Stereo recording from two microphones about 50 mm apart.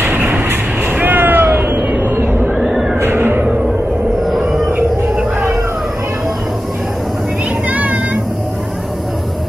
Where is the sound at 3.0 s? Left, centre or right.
Right.